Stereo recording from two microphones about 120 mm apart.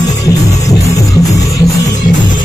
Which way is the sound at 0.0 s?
30° left (ahead or behind).